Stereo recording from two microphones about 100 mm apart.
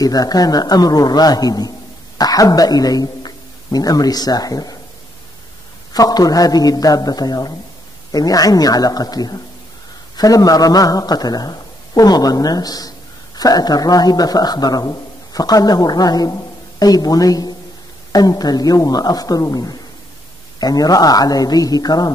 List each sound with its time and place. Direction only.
0.0 s a man's voice: 40° left (ahead or behind)
5.9 s a man's voice: 40° left (ahead or behind)